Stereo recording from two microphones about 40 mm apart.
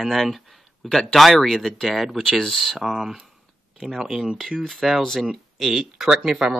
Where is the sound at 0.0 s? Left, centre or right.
Centre.